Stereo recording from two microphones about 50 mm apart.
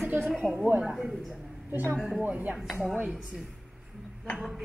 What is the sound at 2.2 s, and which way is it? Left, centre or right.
Speech, right.